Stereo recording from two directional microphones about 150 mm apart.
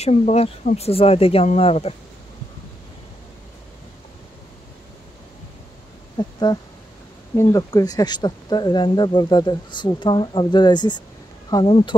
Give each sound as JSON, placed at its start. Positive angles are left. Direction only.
{"t": 0.0, "sound": "speech", "side_deg": 45}
{"t": 6.1, "sound": "speech", "side_deg": 30}